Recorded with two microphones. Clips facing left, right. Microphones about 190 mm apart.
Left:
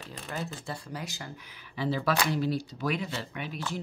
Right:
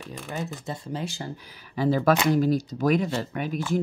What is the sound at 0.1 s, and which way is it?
Speech, 20° right (ahead or behind).